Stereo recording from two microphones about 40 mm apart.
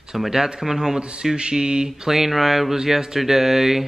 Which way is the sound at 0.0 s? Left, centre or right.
Centre.